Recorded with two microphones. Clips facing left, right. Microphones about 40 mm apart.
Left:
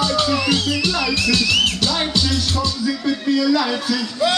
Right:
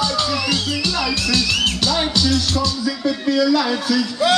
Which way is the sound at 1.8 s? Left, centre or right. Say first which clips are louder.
Right 1 dB; centre.